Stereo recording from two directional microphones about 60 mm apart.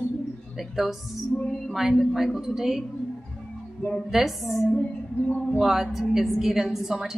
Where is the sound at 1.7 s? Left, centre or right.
Centre.